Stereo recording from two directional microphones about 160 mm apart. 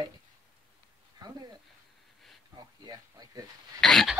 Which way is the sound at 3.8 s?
Centre (ahead or behind).